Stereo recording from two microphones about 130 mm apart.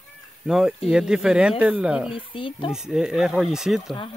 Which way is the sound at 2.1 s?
40° left (ahead or behind).